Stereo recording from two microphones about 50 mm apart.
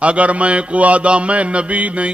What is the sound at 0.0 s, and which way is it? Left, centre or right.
A man's voice, right.